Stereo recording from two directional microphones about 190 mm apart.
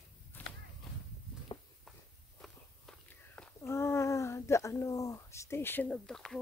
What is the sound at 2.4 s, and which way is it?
Walk, 5° left (ahead or behind).